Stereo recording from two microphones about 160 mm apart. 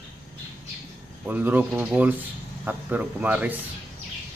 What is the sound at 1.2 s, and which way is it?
Speech, 10° right (ahead or behind).